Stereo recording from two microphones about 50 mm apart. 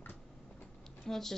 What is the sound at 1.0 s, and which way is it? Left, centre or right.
Speech, centre.